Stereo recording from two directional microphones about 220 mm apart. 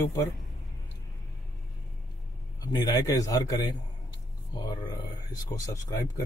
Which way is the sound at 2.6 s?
15° left (ahead or behind).